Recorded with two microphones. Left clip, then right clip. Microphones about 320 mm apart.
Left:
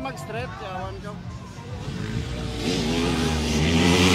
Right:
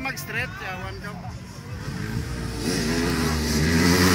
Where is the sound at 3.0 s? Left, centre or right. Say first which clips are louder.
Even; centre.